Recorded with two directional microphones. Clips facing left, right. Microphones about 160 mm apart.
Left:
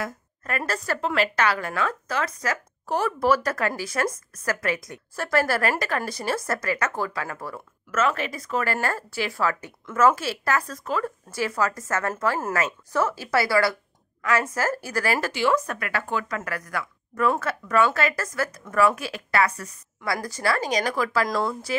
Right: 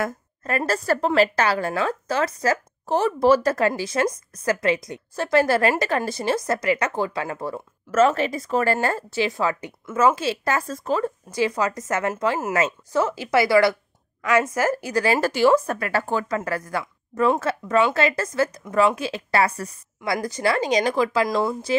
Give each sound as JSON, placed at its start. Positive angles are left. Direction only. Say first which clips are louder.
{"t": 0.4, "sound": "a woman's voice", "louder": "right 5 dB", "side_deg": -30}
{"t": 15.1, "sound": "a woman's voice", "louder": "right 7 dB", "side_deg": -35}